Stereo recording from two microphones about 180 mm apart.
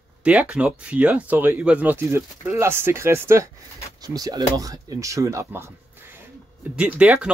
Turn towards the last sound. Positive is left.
turn(degrees=-5)  # may be behind; listen again after turning